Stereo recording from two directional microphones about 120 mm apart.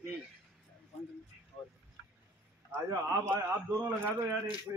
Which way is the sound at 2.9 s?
20° right (ahead or behind).